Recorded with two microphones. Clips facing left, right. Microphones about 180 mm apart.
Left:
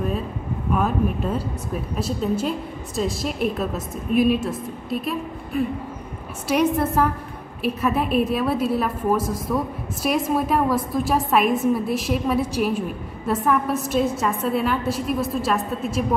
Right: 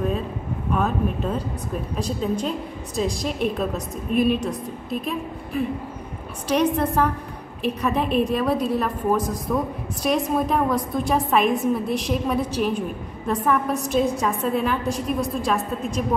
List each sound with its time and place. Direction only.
0.7 s a woman's voice: 5° left (ahead or behind)